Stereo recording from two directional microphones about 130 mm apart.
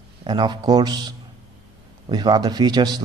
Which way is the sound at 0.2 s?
35° right (ahead or behind).